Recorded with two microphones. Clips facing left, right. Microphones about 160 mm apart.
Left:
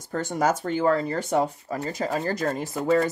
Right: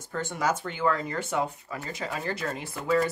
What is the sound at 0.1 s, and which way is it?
Speech, 40° left (ahead or behind).